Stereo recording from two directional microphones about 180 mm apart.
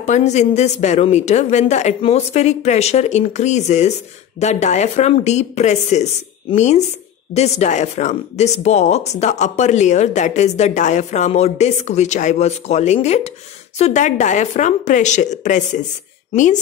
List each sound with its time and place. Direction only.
0.0 s speech: 40° left (ahead or behind)